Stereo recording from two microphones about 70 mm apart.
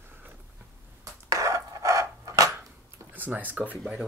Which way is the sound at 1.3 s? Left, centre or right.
Right.